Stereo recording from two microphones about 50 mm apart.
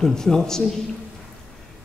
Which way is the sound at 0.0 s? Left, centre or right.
Centre.